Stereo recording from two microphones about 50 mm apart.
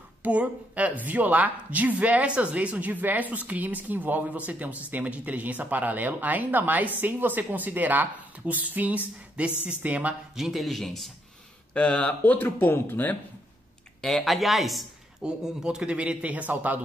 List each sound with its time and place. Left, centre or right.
0.2 s a woman's voice: right
10.3 s speech: centre
11.7 s speech: left
12.4 s speech: left
14.0 s speech: centre
15.2 s a man's voice: centre; by 16.8 s right